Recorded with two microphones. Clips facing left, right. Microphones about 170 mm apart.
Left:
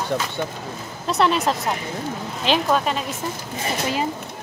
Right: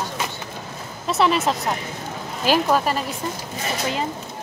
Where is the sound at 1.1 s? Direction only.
Centre (ahead or behind).